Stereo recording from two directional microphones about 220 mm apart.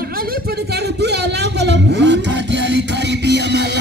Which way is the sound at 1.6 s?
50° right (ahead or behind).